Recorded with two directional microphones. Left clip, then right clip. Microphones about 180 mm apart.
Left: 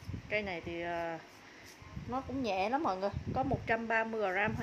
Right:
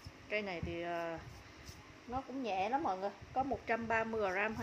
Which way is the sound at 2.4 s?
30° left (ahead or behind).